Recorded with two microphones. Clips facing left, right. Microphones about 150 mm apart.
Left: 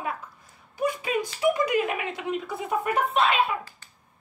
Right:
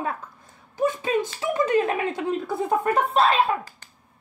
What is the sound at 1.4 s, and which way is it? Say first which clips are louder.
Speech: even; 10° left (ahead or behind).